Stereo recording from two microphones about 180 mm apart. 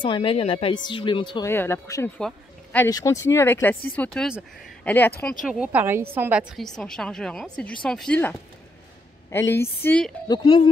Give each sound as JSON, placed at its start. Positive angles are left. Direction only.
{"t": 0.0, "sound": "speech", "side_deg": 30}
{"t": 1.5, "sound": "speech", "side_deg": 15}
{"t": 2.1, "sound": "a sound", "side_deg": 5}
{"t": 2.9, "sound": "speech", "side_deg": 20}
{"t": 4.8, "sound": "speech", "side_deg": 10}
{"t": 5.2, "sound": "a woman's voice", "side_deg": -5}
{"t": 6.5, "sound": "speech", "side_deg": 5}
{"t": 10.2, "sound": "speech", "side_deg": 20}